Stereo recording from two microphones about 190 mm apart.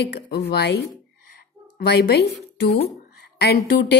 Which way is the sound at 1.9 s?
60° left (ahead or behind).